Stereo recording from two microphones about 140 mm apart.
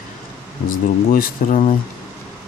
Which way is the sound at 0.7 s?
85° left.